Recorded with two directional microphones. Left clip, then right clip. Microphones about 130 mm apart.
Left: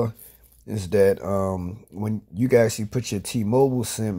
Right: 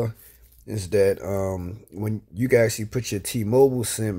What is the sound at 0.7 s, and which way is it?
Speech, centre (ahead or behind).